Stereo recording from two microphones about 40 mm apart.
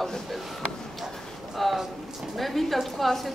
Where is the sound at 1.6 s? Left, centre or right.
Centre.